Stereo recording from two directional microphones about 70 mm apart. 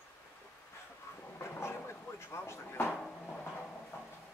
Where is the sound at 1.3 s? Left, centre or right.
Left.